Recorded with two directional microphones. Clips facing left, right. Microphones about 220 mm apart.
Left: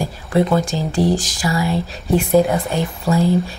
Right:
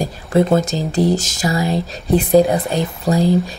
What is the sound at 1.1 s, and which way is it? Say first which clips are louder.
Speech: right 1 dB; 20° right (ahead or behind).